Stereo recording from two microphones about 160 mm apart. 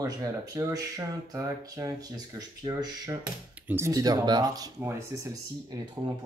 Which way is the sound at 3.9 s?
25° right (ahead or behind).